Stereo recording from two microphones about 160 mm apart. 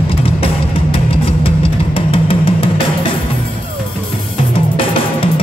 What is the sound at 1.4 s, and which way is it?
Vehicle, 35° left (ahead or behind).